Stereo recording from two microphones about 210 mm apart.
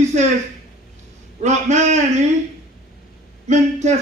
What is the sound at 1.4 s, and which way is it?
Speech, 35° right (ahead or behind).